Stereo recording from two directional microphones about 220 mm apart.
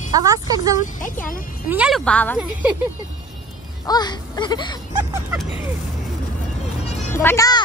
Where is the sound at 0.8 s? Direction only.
35° left (ahead or behind).